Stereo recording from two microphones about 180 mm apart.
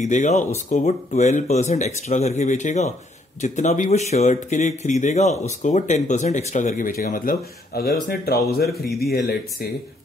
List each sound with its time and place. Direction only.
0.0 s speech: 40° left (ahead or behind); by 9.7 s 60° left (ahead or behind)